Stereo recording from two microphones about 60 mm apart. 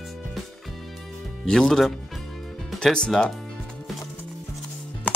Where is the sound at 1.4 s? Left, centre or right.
Centre.